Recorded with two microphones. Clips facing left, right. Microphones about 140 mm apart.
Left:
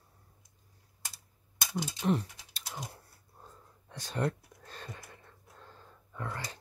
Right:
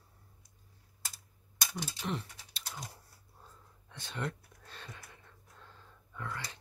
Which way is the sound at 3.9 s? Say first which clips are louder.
Left 6 dB; 40° left (ahead or behind).